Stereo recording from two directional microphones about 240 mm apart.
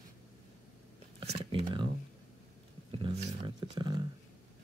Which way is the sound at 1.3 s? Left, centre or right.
Right.